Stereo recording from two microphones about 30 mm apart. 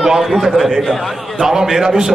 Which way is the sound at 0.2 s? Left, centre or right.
Centre.